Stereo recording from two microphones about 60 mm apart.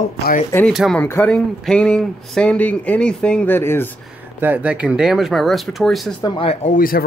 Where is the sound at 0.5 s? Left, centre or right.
Left.